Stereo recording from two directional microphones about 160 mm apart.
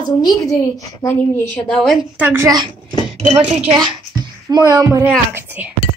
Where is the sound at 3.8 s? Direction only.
25° right (ahead or behind).